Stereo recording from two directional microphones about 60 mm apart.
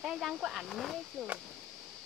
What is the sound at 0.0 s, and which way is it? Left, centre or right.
Speech, centre.